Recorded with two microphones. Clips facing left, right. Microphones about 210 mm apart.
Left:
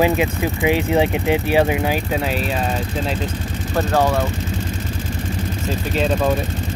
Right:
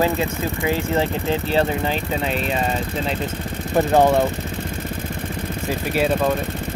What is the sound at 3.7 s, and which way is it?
Speech, 20° right (ahead or behind).